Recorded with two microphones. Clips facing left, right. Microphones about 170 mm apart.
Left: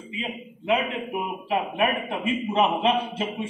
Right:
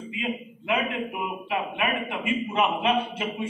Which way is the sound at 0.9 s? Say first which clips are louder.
Left 1 dB; 30° left (ahead or behind).